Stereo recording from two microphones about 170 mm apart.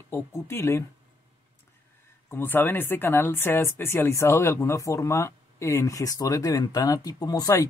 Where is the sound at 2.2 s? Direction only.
10° left (ahead or behind).